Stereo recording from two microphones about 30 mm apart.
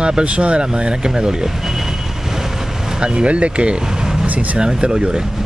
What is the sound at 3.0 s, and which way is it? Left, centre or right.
Speech, right.